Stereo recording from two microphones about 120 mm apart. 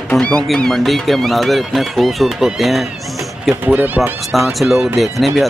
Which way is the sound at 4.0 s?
Centre (ahead or behind).